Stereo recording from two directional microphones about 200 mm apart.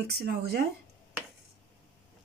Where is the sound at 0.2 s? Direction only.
50° right (ahead or behind).